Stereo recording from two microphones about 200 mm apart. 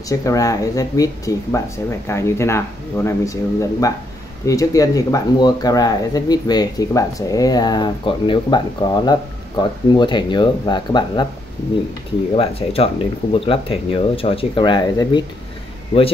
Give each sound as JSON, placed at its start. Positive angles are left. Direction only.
{"t": 0.1, "sound": "speech", "side_deg": 15}
{"t": 4.5, "sound": "speech", "side_deg": 15}
{"t": 12.4, "sound": "speech", "side_deg": 30}